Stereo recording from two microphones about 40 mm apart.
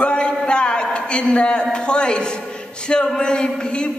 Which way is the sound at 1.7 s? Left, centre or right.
Left.